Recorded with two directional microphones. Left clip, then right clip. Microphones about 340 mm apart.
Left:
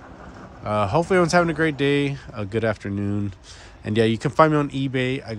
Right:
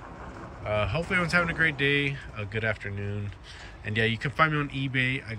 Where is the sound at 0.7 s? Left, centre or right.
Centre.